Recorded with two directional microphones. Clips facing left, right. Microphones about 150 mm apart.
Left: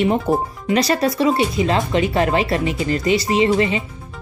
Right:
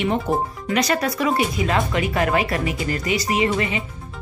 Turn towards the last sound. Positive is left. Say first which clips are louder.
# left 5 dB
turn(degrees=30)  # may be behind; listen again after turning